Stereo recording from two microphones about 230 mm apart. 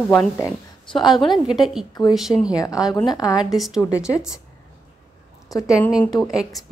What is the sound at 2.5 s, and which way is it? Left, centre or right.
Speech, centre.